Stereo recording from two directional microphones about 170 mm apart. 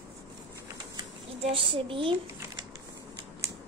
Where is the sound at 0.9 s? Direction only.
30° right (ahead or behind).